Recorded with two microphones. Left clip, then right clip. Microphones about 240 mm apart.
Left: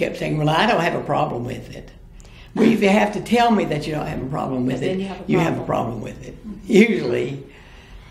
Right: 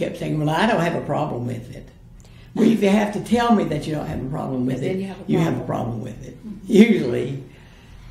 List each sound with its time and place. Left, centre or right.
0.0 s speech: right